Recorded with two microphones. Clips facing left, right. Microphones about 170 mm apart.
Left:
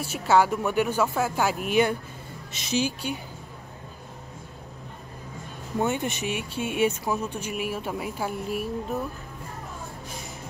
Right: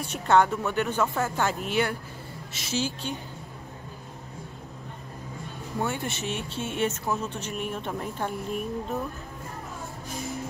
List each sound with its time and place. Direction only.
0.0 s speech: 5° left (ahead or behind)
5.8 s speech: 20° left (ahead or behind)